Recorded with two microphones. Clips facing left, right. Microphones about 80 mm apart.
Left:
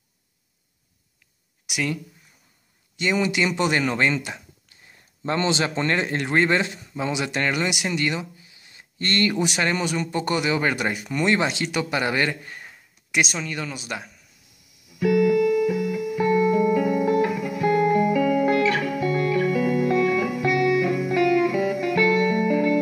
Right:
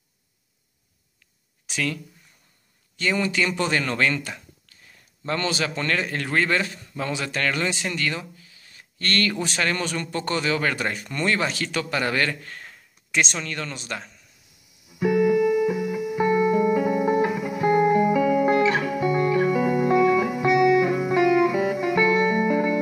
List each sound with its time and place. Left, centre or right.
1.7 s speech: centre
3.0 s speech: centre
14.9 s music: right